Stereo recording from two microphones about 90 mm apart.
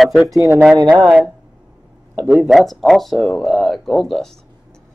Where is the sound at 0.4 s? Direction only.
20° right (ahead or behind).